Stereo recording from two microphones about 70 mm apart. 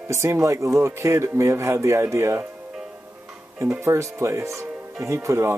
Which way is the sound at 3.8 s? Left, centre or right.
Right.